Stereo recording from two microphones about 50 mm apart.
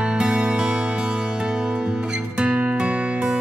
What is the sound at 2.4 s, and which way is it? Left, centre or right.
Music, right.